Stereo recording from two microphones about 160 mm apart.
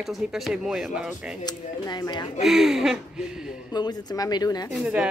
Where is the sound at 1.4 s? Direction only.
25° left (ahead or behind).